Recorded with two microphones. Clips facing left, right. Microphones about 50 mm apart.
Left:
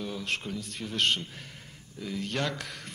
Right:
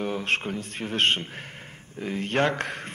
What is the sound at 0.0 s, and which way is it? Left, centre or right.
A man's voice, right.